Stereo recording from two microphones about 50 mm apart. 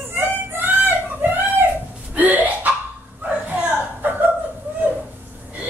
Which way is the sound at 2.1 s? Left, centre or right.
Right.